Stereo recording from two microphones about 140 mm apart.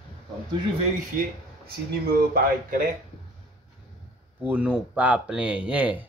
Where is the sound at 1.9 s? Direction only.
90° right.